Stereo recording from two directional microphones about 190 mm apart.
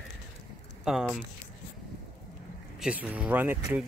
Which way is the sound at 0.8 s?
Centre (ahead or behind).